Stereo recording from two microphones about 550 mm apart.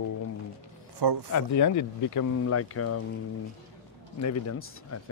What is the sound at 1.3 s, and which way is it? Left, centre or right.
Speech, left.